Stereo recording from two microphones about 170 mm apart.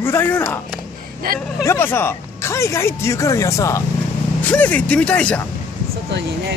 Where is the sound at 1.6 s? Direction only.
15° left (ahead or behind).